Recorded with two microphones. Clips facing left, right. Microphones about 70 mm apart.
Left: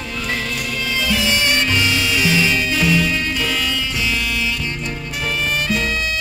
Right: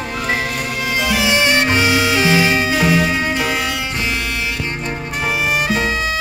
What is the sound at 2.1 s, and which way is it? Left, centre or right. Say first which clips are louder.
Music: right 3 dB; right.